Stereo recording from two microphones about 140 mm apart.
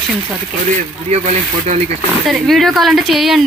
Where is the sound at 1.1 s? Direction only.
50° right (ahead or behind).